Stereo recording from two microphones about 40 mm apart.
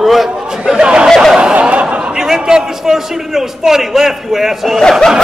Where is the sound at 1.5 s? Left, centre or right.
Right.